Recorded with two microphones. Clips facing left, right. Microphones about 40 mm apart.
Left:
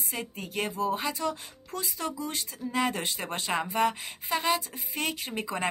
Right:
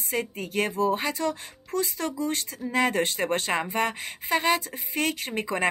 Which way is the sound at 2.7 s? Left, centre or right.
Right.